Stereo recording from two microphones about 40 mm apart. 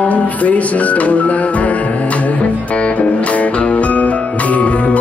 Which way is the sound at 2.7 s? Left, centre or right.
Left.